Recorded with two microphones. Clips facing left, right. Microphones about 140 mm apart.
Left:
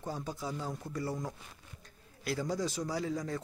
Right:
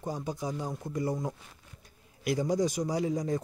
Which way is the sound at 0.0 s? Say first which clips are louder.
Right 4 dB; 15° right (ahead or behind).